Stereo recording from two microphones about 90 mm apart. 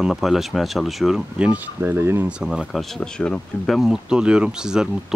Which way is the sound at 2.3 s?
10° right (ahead or behind).